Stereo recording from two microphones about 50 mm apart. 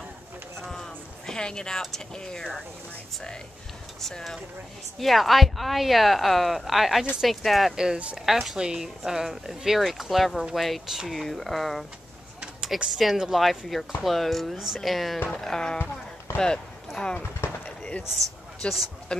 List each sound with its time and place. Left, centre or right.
0.6 s a sound: centre
2.1 s music: centre
4.0 s music: centre
4.9 s speech: centre
7.7 s speech: centre
8.3 s speech: centre
8.5 s speech: centre
15.3 s music: centre
16.3 s speech: centre
17.6 s a sound: left
18.6 s a man's voice: left